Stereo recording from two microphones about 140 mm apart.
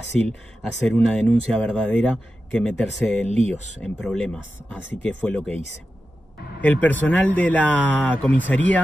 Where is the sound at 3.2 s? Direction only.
50° right (ahead or behind).